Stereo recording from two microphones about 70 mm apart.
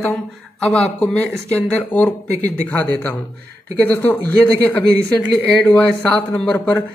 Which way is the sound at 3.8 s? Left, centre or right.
Left.